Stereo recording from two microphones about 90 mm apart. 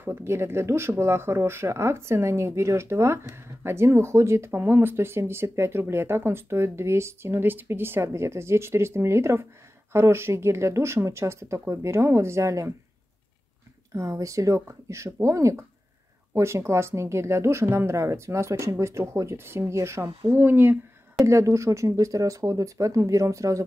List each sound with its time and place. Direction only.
0.0 s speech: 25° right (ahead or behind)
13.9 s speech: 35° right (ahead or behind)
21.3 s speech: 35° right (ahead or behind)